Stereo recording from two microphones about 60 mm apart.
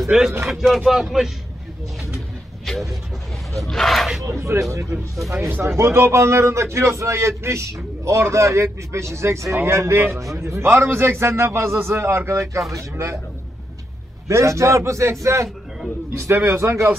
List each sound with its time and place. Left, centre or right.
0.1 s speech: centre
2.6 s vehicle: centre
3.6 s speech: centre
4.2 s a man's voice: right
5.1 s speech: centre
5.6 s a man's voice: right
14.2 s a man's voice: right